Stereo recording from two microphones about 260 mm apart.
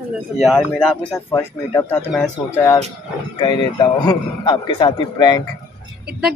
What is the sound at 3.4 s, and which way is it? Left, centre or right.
A man's voice, centre.